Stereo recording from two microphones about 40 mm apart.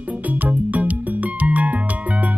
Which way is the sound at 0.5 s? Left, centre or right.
Right.